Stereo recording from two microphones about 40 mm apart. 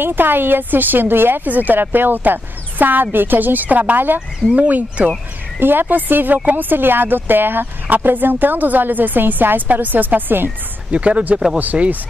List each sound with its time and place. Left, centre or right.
0.0 s speech: right
1.4 s speech: right
4.6 s speech: right
5.6 s speech: right
10.9 s speech: right